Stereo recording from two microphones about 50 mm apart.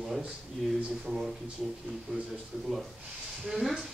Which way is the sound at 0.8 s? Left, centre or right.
Centre.